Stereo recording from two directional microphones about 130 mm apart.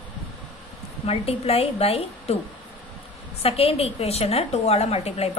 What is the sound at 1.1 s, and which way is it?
A woman's voice, 50° left (ahead or behind).